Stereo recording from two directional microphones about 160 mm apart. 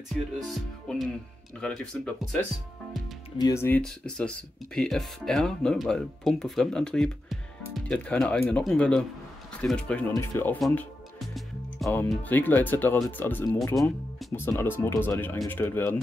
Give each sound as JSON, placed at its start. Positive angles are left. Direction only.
{"t": 0.1, "sound": "speech", "side_deg": 0}
{"t": 3.3, "sound": "speech", "side_deg": 25}
{"t": 3.6, "sound": "speech", "side_deg": 10}
{"t": 10.6, "sound": "music", "side_deg": 5}
{"t": 12.1, "sound": "speech", "side_deg": 10}